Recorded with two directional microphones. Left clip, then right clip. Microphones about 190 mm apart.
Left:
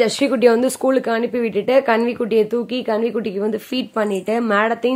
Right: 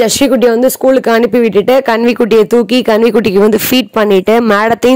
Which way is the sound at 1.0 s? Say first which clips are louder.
Right 11 dB; 45° right (ahead or behind).